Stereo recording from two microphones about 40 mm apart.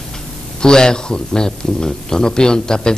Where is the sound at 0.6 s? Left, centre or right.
Centre.